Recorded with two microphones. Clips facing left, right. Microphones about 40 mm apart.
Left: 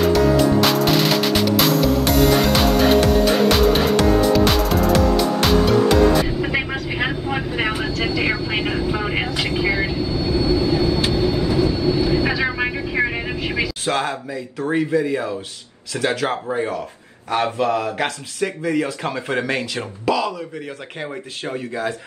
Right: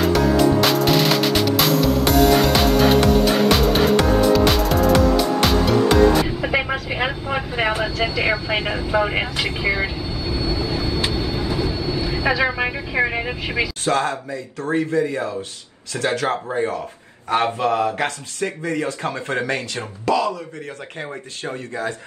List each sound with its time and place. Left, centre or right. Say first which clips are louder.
0.0 s music: left 1 dB; centre
13.8 s speech: right 3 dB; centre
16.1 s speech: right 1 dB; centre
17.6 s speech: right 2 dB; right
18.0 s speech: left 1 dB; centre